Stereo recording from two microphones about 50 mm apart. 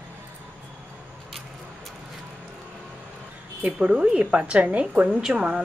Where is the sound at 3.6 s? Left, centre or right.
Right.